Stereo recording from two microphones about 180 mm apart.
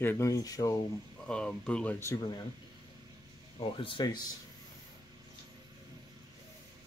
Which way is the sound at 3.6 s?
30° left (ahead or behind).